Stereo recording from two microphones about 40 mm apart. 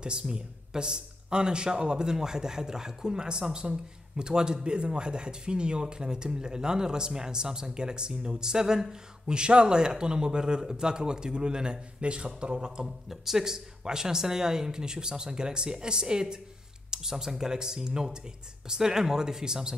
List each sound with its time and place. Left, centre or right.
0.0 s speech: right
12.8 s speech: centre